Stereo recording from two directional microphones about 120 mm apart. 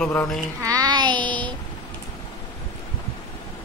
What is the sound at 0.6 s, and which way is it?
Child singing, 30° right (ahead or behind).